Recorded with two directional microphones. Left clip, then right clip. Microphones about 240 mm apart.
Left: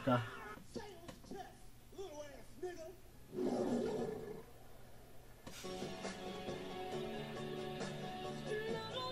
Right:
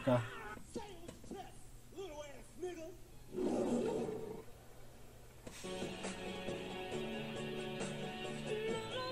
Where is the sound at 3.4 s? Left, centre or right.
Right.